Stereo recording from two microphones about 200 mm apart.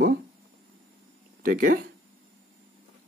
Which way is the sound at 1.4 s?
45° right (ahead or behind).